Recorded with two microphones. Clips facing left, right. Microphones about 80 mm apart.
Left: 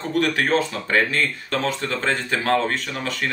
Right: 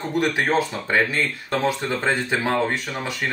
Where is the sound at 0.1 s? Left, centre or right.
Centre.